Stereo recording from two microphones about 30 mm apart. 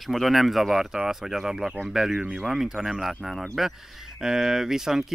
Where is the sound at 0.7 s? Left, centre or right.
Centre.